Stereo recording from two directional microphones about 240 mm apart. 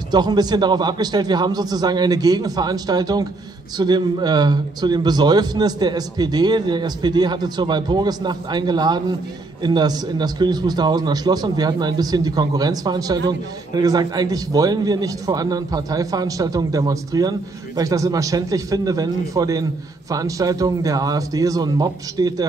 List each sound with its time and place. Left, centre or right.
0.1 s a man's voice: centre